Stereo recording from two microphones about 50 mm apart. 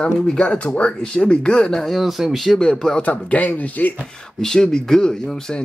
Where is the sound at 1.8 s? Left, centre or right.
Centre.